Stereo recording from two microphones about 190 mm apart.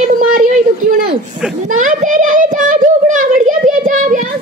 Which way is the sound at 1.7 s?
45° right (ahead or behind).